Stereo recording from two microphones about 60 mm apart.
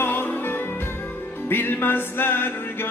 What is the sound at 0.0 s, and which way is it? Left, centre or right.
Music, left.